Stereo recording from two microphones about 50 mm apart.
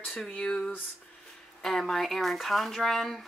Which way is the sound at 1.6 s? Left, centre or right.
Centre.